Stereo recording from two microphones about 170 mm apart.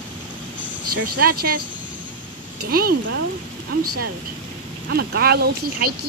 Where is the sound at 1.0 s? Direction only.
60° right (ahead or behind).